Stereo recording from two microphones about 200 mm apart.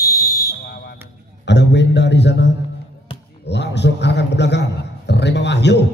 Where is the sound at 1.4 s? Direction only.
60° left (ahead or behind).